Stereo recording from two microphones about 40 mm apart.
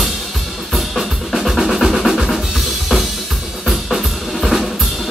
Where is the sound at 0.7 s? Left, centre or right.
Centre.